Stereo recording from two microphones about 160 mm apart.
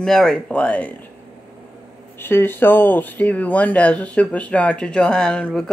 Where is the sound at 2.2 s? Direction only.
15° left (ahead or behind).